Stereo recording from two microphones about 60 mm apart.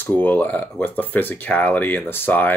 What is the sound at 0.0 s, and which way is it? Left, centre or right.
Speech, left.